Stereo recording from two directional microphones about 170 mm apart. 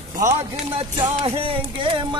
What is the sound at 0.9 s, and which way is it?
Music, 35° right (ahead or behind).